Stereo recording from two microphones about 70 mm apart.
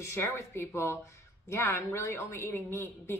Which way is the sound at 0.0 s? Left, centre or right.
Left.